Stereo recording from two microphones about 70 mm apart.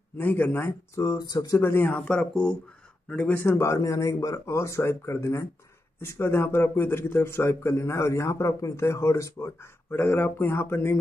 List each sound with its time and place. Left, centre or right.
0.2 s speech: left
0.9 s speech: left
1.2 s speech: left
1.6 s a man's voice: left
2.0 s speech: centre
3.3 s a man's voice: left
9.8 s a man's voice: left